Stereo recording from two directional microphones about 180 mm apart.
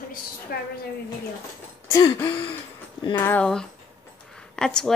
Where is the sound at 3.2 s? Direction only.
10° left (ahead or behind).